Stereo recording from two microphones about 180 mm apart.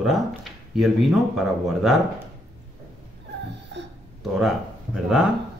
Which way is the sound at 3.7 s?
75° right (ahead or behind).